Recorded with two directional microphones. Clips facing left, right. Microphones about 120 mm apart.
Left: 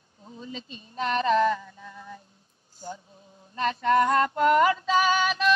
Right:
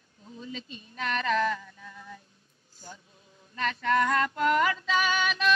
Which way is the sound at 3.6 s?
30° left (ahead or behind).